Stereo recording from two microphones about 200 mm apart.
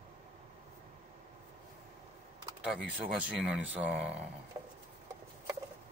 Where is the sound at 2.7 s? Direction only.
5° right (ahead or behind).